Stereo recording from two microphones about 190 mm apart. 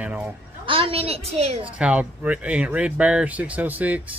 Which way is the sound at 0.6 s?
25° right (ahead or behind).